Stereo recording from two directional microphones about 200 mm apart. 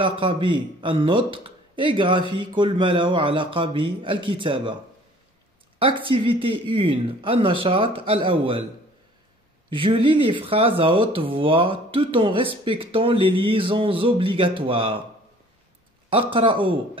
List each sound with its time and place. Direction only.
0.0 s speech: 25° right (ahead or behind)
5.8 s speech: 25° right (ahead or behind)
9.7 s speech: 25° right (ahead or behind)
16.1 s speech: 25° right (ahead or behind)